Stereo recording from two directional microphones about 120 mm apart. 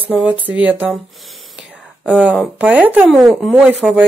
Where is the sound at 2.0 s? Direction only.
10° right (ahead or behind).